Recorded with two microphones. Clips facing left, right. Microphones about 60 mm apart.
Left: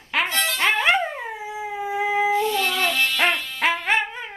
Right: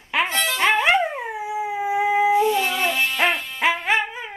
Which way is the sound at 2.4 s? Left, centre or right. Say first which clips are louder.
Right 2 dB; centre.